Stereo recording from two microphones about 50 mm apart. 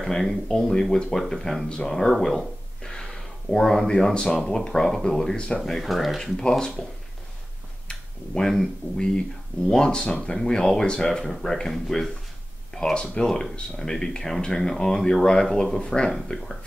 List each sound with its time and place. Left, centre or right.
0.0 s speech: centre
5.7 s speech: centre
7.9 s a sound: centre
8.9 s speech: centre
12.7 s speech: centre